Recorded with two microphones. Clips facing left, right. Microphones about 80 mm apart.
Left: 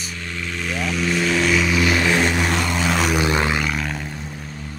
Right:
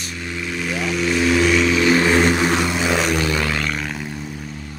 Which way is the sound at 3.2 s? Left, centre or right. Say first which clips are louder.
Left 1 dB; left.